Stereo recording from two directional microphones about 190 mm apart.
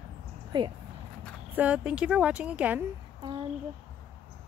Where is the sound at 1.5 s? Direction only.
5° right (ahead or behind).